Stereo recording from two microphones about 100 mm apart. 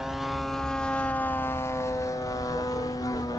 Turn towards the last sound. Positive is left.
turn(degrees=35)  # may be behind; listen again after turning